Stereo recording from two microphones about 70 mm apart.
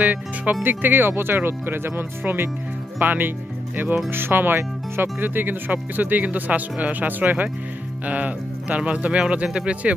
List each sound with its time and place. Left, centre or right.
0.0 s speech: right